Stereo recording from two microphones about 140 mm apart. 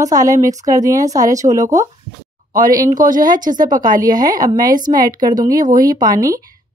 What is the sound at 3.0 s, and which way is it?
Speech, 70° right (ahead or behind).